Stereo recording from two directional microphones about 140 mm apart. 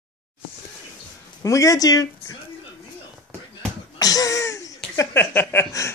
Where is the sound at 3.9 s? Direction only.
25° left (ahead or behind).